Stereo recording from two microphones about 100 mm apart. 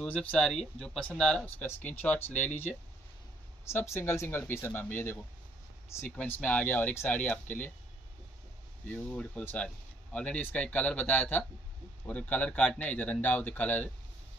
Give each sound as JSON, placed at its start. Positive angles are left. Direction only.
{"t": 0.0, "sound": "speech", "side_deg": 15}
{"t": 1.4, "sound": "speech", "side_deg": 20}
{"t": 8.9, "sound": "speech", "side_deg": 10}